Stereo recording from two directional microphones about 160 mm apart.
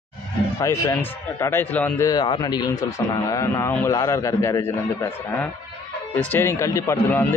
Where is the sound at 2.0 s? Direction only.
25° left (ahead or behind).